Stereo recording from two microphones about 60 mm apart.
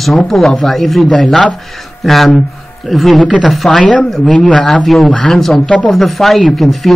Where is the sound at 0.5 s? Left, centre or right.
Centre.